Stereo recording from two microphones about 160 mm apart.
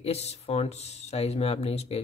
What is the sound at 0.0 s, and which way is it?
Speech, 40° left (ahead or behind).